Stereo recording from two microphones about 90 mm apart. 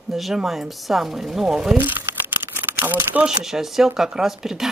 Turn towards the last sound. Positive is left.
turn(degrees=-5)  # may be behind; listen again after turning